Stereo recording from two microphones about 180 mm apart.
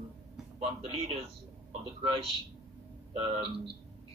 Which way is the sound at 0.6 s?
35° right (ahead or behind).